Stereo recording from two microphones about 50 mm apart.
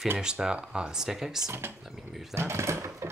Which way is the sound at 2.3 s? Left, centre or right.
Right.